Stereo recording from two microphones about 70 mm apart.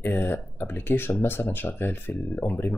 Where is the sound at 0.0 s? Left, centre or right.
Left.